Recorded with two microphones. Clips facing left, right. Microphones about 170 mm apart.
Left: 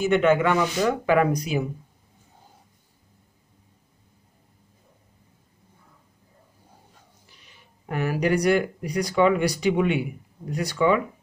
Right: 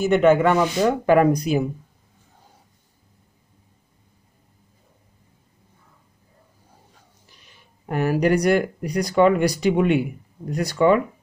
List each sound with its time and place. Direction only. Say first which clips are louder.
0.0 s speech: right 3 dB; 45° right (ahead or behind)
7.8 s speech: right 4 dB; 40° right (ahead or behind)